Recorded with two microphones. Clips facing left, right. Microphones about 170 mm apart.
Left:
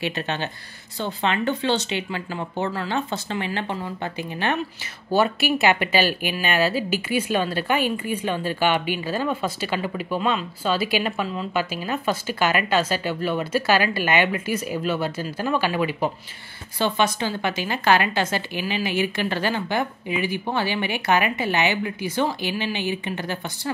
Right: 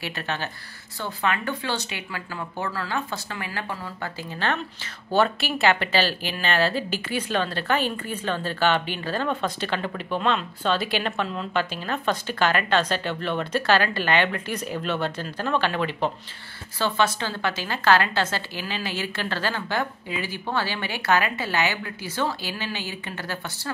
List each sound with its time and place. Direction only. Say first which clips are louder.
0.0 s speech: left 4 dB; 20° left (ahead or behind)